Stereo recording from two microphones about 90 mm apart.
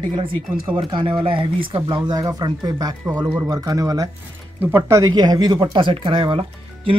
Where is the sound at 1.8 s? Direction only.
50° right (ahead or behind); by 5.1 s 35° right (ahead or behind).